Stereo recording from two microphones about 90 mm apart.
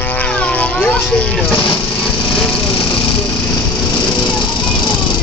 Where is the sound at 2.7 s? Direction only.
70° left (ahead or behind).